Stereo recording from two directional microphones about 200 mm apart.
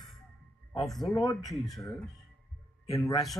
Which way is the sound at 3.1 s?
Centre (ahead or behind).